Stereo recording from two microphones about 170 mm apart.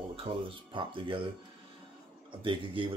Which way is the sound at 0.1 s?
35° right (ahead or behind).